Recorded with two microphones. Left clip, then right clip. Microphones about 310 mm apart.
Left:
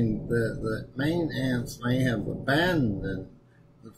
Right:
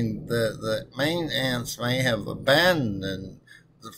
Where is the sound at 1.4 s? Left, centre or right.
Centre.